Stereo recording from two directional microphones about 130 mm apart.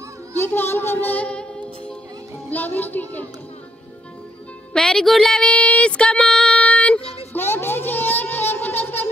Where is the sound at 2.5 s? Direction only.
15° left (ahead or behind).